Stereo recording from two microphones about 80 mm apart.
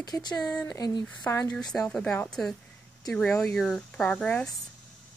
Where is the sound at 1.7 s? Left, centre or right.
Centre.